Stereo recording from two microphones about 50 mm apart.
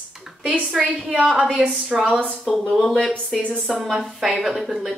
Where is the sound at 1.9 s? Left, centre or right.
Right.